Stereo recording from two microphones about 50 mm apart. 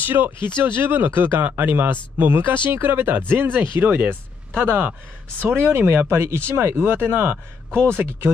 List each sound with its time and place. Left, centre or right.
0.0 s speech: right
5.4 s speech: right
7.9 s speech: right